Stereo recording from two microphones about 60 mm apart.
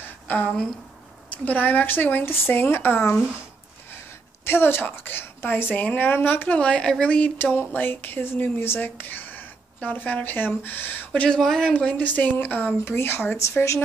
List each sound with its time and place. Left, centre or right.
0.0 s a sound: left
1.3 s speech: left
4.5 s speech: left
6.5 s a woman's voice: centre
7.5 s speech: left
11.3 s speech: centre
11.7 s a woman's voice: left
13.4 s speech: left